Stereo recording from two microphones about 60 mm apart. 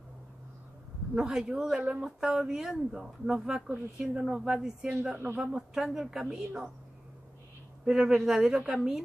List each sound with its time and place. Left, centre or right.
1.1 s speech: centre
2.0 s speech: centre
5.1 s speech: right
5.4 s speech: centre
7.8 s speech: centre